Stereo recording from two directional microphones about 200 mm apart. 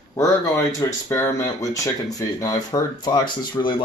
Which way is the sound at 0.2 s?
15° left (ahead or behind).